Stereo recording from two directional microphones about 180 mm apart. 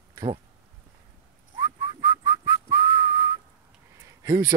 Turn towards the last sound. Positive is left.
turn(degrees=-15)  # may be behind; listen again after turning